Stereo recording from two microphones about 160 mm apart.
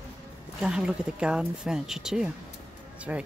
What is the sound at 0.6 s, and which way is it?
Speech, 5° right (ahead or behind).